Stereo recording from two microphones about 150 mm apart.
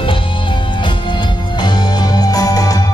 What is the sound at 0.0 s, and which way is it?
Music, 35° left (ahead or behind).